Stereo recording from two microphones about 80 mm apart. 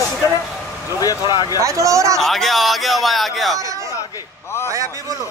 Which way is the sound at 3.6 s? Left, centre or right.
Right.